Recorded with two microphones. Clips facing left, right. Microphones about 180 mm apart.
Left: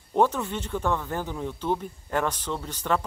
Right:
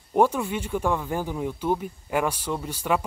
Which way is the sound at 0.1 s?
10° right (ahead or behind).